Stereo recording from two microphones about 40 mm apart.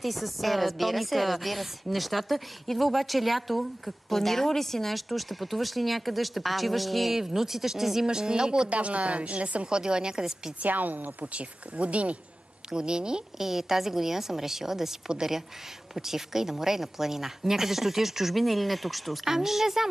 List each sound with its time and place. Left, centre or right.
0.0 s a woman's voice: centre; by 8.6 s right
8.6 s speech: right
9.7 s speech: right
10.6 s a woman's voice: right
11.3 s speech: right
12.7 s speech: right
13.4 s speech: centre